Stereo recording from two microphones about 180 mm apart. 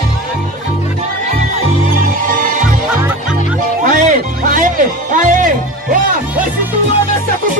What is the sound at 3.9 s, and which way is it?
Music, 45° right (ahead or behind).